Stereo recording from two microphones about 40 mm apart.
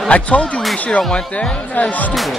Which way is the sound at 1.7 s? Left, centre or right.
Left.